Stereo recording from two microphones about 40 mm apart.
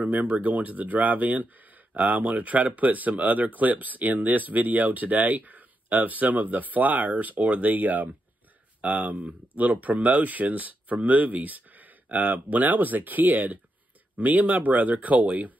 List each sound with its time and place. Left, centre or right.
0.0 s speech: right